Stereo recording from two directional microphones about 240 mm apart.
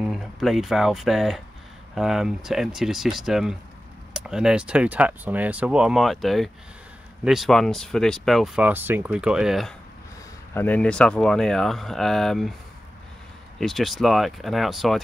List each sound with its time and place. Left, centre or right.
0.0 s speech: centre
13.6 s speech: centre